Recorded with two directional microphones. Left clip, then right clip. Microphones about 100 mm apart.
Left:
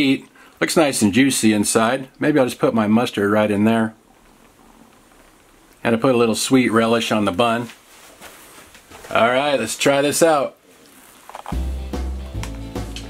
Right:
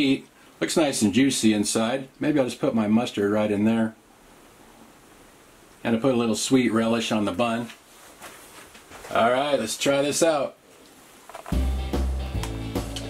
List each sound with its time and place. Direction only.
0.0 s speech: 35° left (ahead or behind)
5.8 s speech: 35° left (ahead or behind)
9.1 s speech: 50° left (ahead or behind)
12.4 s music: centre (ahead or behind)